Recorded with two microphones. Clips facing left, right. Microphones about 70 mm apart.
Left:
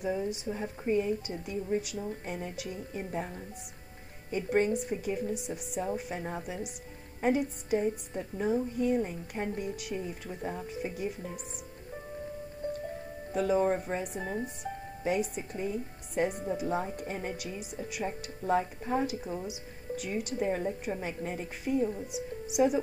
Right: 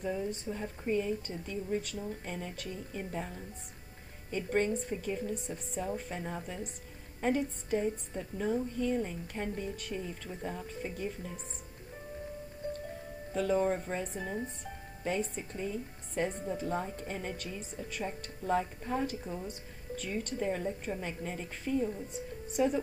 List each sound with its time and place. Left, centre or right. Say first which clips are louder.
0.0 s a woman's voice: left 3 dB; centre
13.7 s speech: left 3 dB; centre